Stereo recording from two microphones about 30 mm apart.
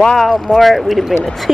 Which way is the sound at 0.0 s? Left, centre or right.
Left.